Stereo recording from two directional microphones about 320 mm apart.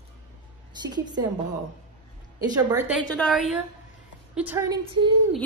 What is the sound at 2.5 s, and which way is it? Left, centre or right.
Speech, centre.